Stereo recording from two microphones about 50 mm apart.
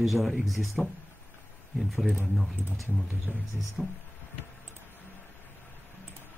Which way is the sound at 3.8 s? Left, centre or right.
Centre.